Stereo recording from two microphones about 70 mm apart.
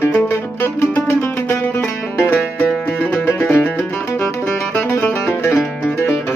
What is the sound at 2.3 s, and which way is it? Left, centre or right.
Music, centre.